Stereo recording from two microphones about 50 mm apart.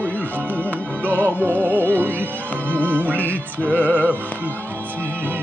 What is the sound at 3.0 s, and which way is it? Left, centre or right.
Music, right.